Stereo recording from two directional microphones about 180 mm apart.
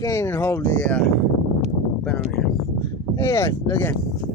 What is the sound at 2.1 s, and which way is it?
Speech, 5° left (ahead or behind).